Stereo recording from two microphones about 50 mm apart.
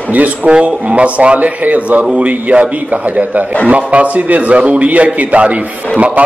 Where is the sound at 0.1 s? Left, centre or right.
Right.